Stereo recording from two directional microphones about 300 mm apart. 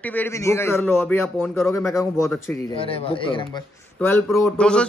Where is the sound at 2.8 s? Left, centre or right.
Centre.